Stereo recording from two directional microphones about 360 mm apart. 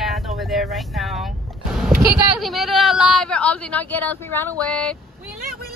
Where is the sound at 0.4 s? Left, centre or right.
Centre.